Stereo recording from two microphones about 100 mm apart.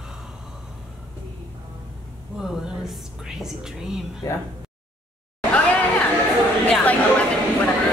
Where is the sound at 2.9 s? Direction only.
5° right (ahead or behind).